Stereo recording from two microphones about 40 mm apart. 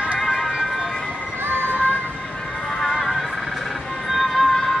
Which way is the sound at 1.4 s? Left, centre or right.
Right.